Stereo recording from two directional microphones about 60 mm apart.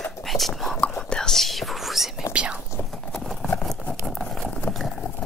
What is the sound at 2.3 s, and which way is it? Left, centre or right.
Whispering, right.